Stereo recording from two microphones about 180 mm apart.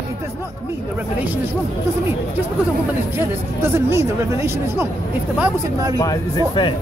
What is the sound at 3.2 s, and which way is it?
Speech, 15° right (ahead or behind).